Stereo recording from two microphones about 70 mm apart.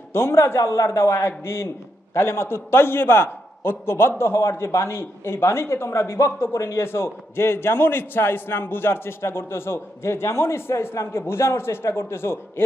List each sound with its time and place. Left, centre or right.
0.1 s a man's voice: left